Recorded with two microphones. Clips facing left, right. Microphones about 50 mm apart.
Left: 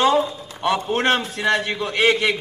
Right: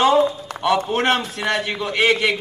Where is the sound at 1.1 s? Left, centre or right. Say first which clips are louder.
Left 2 dB; left.